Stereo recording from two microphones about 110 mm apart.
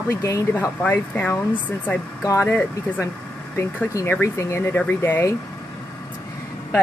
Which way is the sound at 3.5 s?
25° left (ahead or behind).